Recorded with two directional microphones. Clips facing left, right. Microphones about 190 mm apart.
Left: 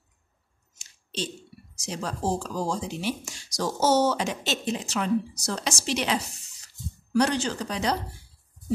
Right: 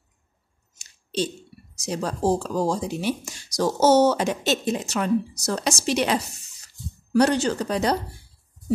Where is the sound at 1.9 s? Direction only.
40° right (ahead or behind).